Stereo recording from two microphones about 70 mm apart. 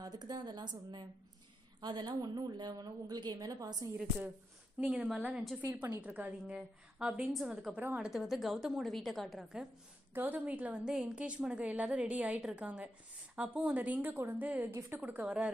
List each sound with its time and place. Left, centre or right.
0.0 s a woman's voice: right
3.9 s a woman's voice: right
5.9 s a woman's voice: right
7.3 s a woman's voice: centre
7.7 s a woman's voice: right
8.0 s a woman's voice: centre
10.1 s a woman's voice: right
10.9 s a woman's voice: centre
14.7 s a woman's voice: right
15.0 s a woman's voice: right